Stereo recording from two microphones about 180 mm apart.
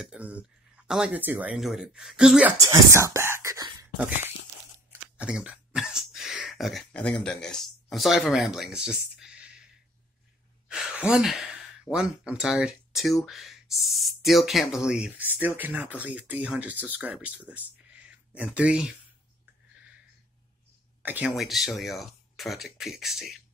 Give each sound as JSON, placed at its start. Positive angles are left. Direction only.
{"t": 0.0, "sound": "speech", "side_deg": -5}
{"t": 2.6, "sound": "speech", "side_deg": -15}
{"t": 10.7, "sound": "speech", "side_deg": -5}
{"t": 17.9, "sound": "a sound", "side_deg": -5}
{"t": 21.0, "sound": "speech", "side_deg": -10}